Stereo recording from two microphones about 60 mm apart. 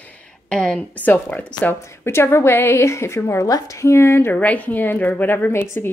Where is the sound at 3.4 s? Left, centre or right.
Left.